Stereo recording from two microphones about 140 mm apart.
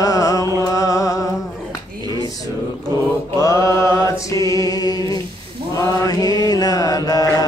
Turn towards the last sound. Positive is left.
turn(degrees=25)  # may be behind; listen again after turning